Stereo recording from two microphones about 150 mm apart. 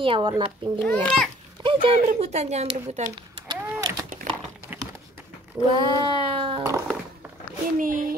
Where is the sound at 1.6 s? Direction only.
35° right (ahead or behind).